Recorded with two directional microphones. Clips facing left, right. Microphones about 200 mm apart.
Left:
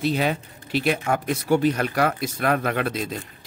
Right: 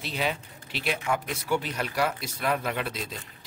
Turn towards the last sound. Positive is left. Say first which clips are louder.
# left 7 dB
turn(degrees=55)  # may be behind; listen again after turning